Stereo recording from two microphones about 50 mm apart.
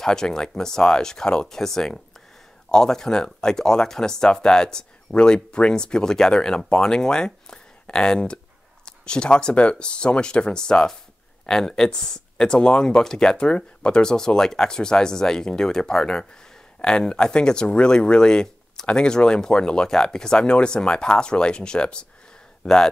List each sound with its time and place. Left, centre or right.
0.0 s speech: centre